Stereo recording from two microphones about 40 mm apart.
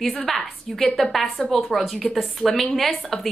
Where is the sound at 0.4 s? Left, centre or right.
Centre.